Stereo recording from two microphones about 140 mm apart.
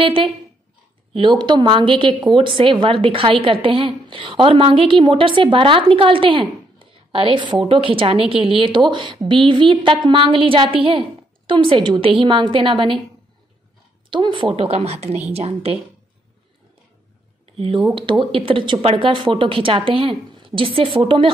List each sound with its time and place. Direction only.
0.0 s a woman's voice: 40° right (ahead or behind)
1.4 s a woman's voice: 35° right (ahead or behind)
14.1 s speech: 35° right (ahead or behind)
17.6 s a woman's voice: 40° right (ahead or behind)